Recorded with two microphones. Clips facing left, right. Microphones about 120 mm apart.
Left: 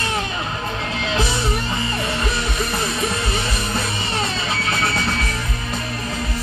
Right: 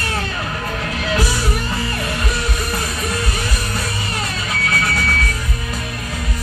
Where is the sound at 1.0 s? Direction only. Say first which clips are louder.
Right 1 dB; 25° left (ahead or behind).